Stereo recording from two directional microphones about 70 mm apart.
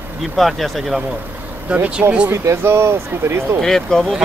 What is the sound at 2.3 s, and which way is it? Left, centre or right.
Speech, right.